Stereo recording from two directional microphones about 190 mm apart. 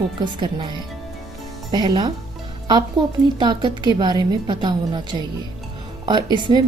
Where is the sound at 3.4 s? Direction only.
25° right (ahead or behind).